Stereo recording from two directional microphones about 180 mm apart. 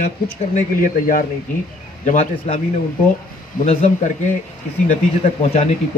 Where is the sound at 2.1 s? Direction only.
35° left (ahead or behind).